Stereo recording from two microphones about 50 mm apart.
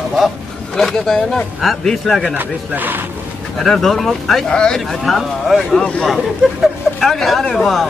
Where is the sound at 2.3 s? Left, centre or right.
Right.